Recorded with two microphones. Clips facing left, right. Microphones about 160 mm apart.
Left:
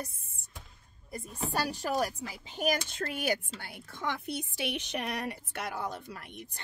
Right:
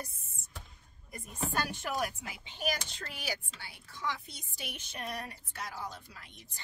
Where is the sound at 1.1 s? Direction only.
35° left (ahead or behind).